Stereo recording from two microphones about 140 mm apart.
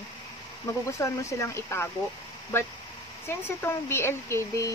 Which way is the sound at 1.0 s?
20° left (ahead or behind).